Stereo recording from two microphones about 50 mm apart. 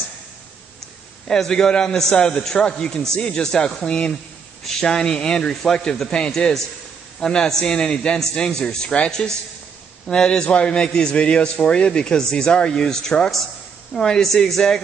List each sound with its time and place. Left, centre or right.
1.2 s speech: centre